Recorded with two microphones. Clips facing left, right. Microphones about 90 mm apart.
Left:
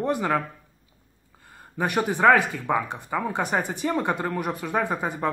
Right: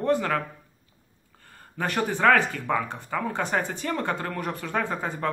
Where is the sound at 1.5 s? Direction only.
15° left (ahead or behind).